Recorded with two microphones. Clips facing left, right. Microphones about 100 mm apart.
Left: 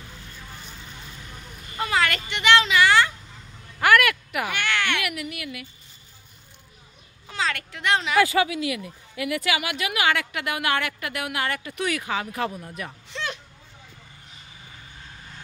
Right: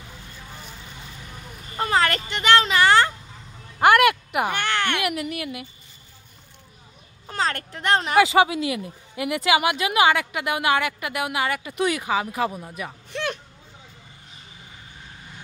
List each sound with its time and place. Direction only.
1.8 s a child's voice: 35° right (ahead or behind)
3.8 s a sound: 25° right (ahead or behind)
4.5 s speech: 35° right (ahead or behind)
7.2 s speech: 40° right (ahead or behind)
8.2 s speech: 20° right (ahead or behind)
13.1 s a sound: 55° right (ahead or behind)